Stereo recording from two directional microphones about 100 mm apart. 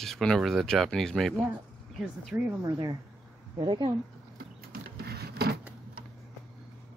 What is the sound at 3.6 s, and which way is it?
Speech, 50° right (ahead or behind).